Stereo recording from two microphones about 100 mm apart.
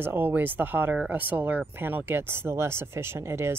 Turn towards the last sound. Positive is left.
turn(degrees=-25)  # may be behind; listen again after turning